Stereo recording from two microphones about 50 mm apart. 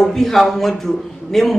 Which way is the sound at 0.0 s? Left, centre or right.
Centre.